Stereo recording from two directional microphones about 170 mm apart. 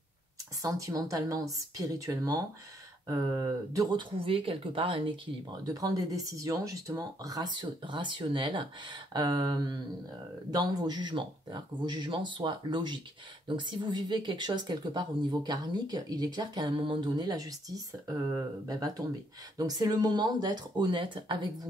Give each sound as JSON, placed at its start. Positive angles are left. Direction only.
{"t": 0.6, "sound": "speech", "side_deg": -20}
{"t": 4.2, "sound": "speech", "side_deg": -30}